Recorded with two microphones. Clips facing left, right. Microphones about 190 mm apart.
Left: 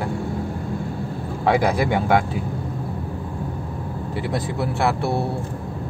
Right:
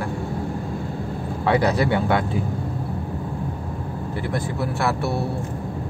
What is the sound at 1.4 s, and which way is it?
Speech, 10° left (ahead or behind).